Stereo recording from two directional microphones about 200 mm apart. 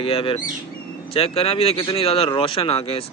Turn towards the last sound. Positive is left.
turn(degrees=30)  # may be behind; listen again after turning